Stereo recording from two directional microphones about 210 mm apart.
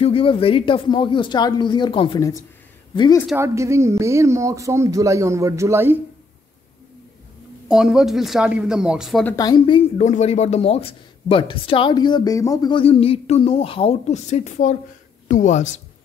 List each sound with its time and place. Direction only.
0.0 s speech: 25° left (ahead or behind)
3.3 s speech: 15° right (ahead or behind)
7.6 s speech: centre (ahead or behind)
9.2 s speech: 20° left (ahead or behind); by 15.6 s 35° left (ahead or behind)